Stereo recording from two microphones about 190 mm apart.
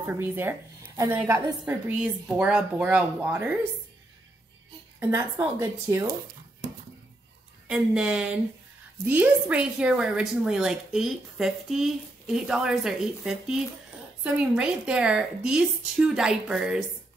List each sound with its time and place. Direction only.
0.0 s speech: 10° right (ahead or behind)
5.1 s speech: 15° right (ahead or behind)
7.6 s a woman's voice: 5° right (ahead or behind)